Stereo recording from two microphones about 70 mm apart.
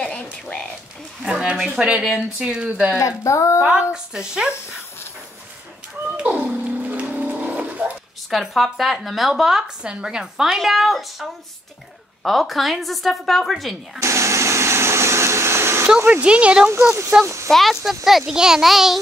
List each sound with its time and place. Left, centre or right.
0.1 s a sound: centre
1.2 s speech: centre
3.0 s speech: left
3.6 s speech: centre
6.1 s music: centre
8.3 s speech: centre
14.0 s vacuum cleaner: right
16.2 s speech: centre
16.6 s speech: right
17.5 s speech: centre